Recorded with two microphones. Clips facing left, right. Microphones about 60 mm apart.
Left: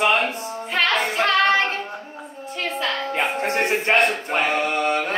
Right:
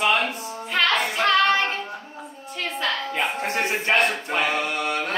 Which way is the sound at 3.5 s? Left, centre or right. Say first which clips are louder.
Left 3 dB; left.